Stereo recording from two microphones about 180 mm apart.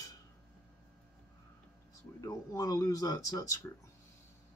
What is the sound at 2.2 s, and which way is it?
Speech, 20° left (ahead or behind).